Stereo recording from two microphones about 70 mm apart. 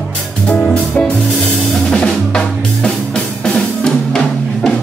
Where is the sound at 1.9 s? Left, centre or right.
Centre.